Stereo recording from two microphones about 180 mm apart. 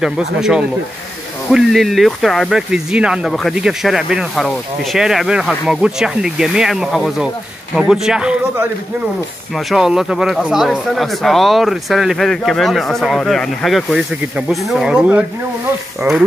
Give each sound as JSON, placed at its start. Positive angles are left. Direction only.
{"t": 0.0, "sound": "speech", "side_deg": -5}
{"t": 9.7, "sound": "speech", "side_deg": -5}